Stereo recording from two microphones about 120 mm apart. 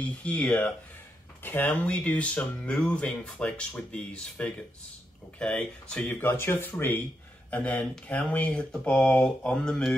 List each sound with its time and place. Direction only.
0.0 s speech: 10° left (ahead or behind)